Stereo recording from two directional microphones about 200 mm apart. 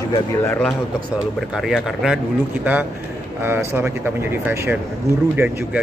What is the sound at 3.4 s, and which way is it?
Speech, 10° right (ahead or behind).